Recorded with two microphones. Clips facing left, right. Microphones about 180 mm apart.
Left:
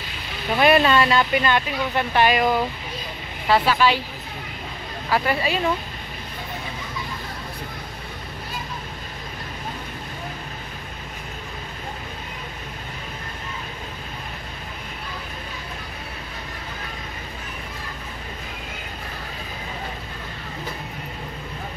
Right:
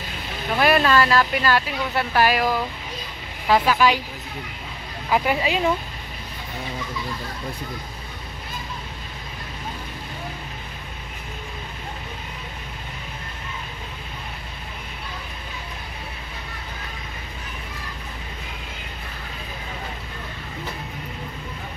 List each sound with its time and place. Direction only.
0.6 s speech: centre (ahead or behind)
5.1 s speech: 15° right (ahead or behind)